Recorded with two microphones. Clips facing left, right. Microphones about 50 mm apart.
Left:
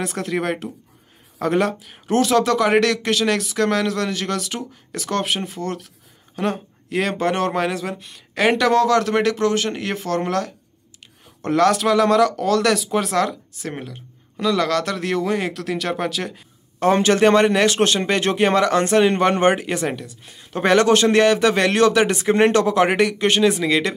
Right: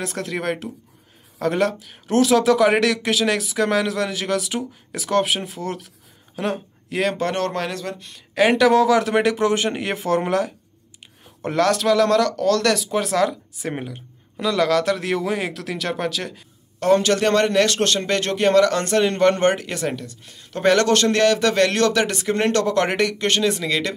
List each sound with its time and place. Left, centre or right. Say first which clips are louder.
0.0 s a man's voice: left 2 dB; centre
8.4 s speech: right 1 dB; centre
11.4 s speech: left 2 dB; centre
13.6 s speech: right 2 dB; centre
16.8 s a man's voice: left 2 dB; left